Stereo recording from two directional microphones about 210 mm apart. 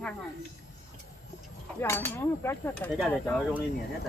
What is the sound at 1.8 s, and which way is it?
Speech, 10° left (ahead or behind).